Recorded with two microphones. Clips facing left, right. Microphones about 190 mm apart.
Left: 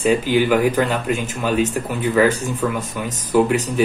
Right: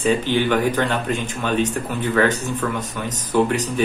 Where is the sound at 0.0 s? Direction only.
10° left (ahead or behind).